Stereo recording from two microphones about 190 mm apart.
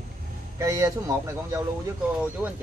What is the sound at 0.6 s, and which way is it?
Speech, 15° right (ahead or behind).